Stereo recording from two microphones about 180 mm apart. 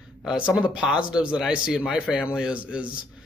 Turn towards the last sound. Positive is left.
turn(degrees=-5)  # may be behind; listen again after turning